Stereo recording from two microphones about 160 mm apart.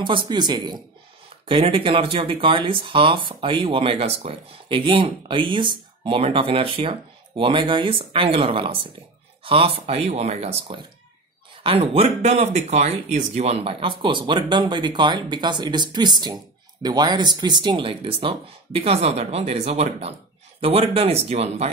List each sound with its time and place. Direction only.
0.0 s a man's voice: 30° right (ahead or behind)